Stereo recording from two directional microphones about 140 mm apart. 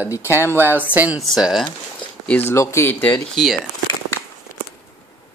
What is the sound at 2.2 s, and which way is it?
Speech, 15° left (ahead or behind).